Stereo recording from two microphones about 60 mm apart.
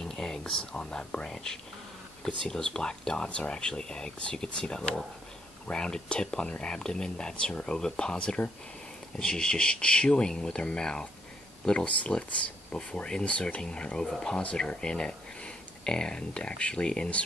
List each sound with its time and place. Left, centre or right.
0.0 s speech: centre
14.4 s speech: centre